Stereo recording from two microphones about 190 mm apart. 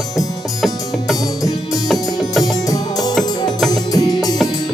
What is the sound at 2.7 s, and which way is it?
Music, 20° left (ahead or behind).